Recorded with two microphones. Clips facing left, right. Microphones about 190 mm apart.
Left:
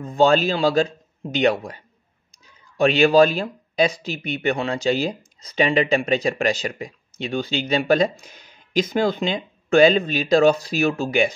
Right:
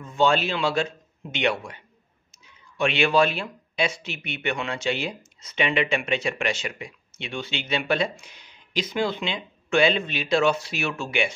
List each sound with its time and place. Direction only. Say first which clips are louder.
0.0 s speech: left 5 dB; 40° left (ahead or behind)